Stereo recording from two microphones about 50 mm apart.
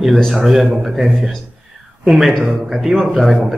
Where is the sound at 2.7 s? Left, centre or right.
Centre.